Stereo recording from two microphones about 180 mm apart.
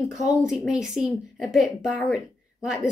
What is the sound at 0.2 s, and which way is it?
A woman's voice, 5° right (ahead or behind).